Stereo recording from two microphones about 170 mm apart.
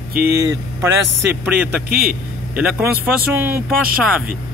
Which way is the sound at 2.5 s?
10° right (ahead or behind).